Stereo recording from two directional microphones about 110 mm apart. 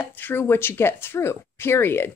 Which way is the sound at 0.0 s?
20° left (ahead or behind).